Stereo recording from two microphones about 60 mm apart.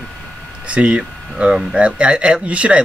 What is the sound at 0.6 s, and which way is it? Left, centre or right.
Speech, centre.